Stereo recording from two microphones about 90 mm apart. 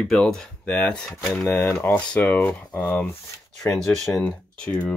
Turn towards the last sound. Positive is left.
turn(degrees=15)  # may be behind; listen again after turning